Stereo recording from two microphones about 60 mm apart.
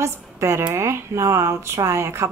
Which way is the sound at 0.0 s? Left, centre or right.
Right.